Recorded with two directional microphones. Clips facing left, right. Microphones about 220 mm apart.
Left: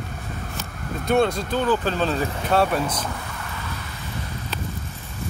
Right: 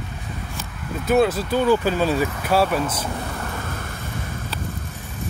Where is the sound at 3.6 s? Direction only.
50° right (ahead or behind).